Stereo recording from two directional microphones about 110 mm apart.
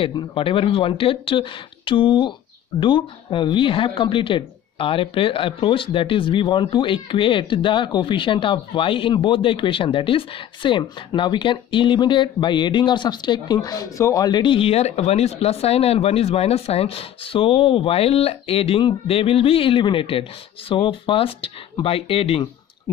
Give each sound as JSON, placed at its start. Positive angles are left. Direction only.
{"t": 0.0, "sound": "speech", "side_deg": 45}